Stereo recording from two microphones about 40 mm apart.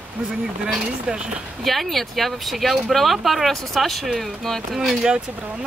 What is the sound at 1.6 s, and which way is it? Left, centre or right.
Speech, centre.